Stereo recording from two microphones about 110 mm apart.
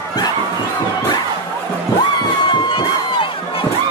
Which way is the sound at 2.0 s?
50° left (ahead or behind).